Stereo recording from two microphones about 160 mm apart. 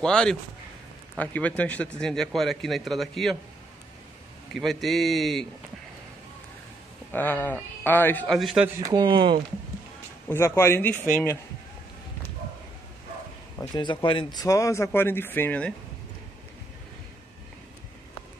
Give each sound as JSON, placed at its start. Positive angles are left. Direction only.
{"t": 0.0, "sound": "a man's voice", "side_deg": 5}
{"t": 4.6, "sound": "a man's voice", "side_deg": 0}
{"t": 7.1, "sound": "speech", "side_deg": 10}
{"t": 8.4, "sound": "a man's voice", "side_deg": 0}
{"t": 8.8, "sound": "speech", "side_deg": -25}
{"t": 10.2, "sound": "speech", "side_deg": 15}
{"t": 13.6, "sound": "speech", "side_deg": 30}